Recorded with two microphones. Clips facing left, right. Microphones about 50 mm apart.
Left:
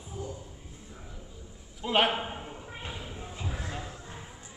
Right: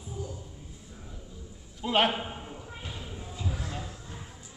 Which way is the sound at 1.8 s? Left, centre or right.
Centre.